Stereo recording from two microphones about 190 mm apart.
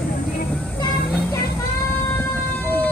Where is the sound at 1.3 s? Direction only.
15° left (ahead or behind).